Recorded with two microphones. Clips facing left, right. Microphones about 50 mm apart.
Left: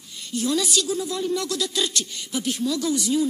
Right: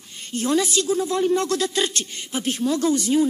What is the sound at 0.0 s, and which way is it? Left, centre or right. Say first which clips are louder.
A woman's voice: right 1 dB; right.